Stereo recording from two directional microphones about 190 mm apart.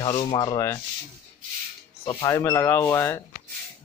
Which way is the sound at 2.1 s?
20° left (ahead or behind).